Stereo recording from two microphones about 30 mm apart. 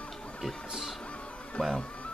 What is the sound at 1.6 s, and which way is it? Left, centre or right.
Speech, left.